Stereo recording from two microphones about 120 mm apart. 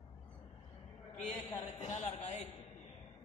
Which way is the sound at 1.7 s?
70° left (ahead or behind).